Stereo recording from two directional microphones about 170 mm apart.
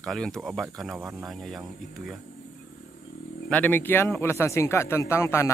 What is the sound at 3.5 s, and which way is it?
Speech, 10° left (ahead or behind).